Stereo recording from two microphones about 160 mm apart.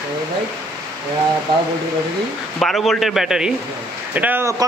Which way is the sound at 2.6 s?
Centre (ahead or behind).